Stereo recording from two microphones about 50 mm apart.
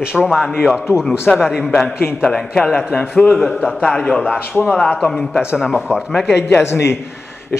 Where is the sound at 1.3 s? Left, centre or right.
Left.